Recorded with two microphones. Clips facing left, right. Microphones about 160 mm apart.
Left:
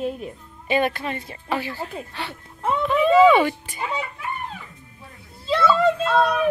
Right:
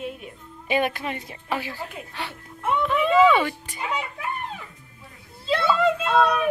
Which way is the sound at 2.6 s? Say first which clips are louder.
Left 3 dB; 35° left (ahead or behind).